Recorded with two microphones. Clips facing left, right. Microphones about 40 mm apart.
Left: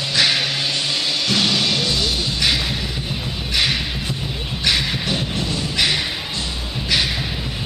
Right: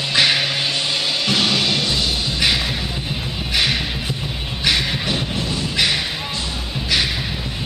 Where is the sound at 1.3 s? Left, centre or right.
Centre.